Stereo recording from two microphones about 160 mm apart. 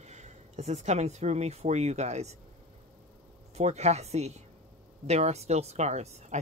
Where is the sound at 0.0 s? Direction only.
45° right (ahead or behind).